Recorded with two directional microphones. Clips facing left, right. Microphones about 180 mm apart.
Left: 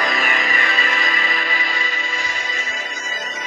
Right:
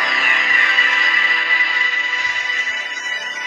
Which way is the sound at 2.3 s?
50° left (ahead or behind).